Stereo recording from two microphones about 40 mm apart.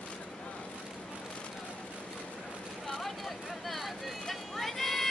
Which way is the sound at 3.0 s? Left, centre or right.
Centre.